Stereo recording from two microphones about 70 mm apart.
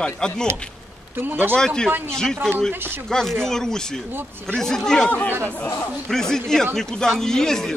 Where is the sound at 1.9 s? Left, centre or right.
Right.